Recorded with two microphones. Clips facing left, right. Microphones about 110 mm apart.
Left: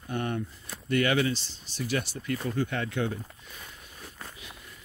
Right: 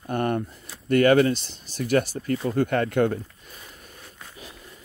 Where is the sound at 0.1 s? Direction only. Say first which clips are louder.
Right 7 dB; 55° right (ahead or behind).